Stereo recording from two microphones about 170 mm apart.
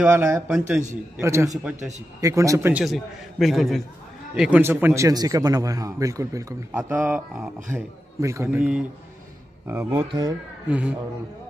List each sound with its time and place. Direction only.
0.0 s a man's voice: 15° right (ahead or behind)
1.2 s a man's voice: 15° right (ahead or behind)
2.7 s a man's voice: centre (ahead or behind)
4.4 s a man's voice: 10° right (ahead or behind)
8.5 s a man's voice: 5° right (ahead or behind)